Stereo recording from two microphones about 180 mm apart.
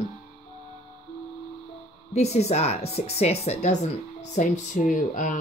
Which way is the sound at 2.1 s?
35° left (ahead or behind).